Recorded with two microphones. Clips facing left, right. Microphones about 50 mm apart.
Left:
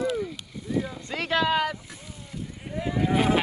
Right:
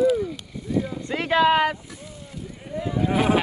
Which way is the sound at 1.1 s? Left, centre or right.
Right.